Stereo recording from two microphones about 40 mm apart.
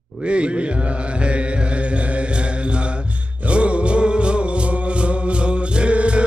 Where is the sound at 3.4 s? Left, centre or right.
Right.